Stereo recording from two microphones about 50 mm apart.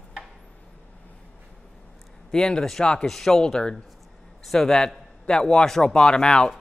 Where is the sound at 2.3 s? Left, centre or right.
Centre.